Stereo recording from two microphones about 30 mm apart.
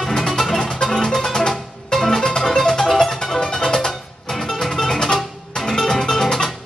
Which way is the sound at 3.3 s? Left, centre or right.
Left.